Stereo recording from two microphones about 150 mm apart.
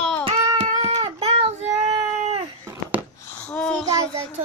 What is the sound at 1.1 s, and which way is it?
Child singing, 40° right (ahead or behind).